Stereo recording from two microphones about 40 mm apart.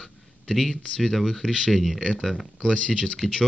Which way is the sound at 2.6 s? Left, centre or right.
Left.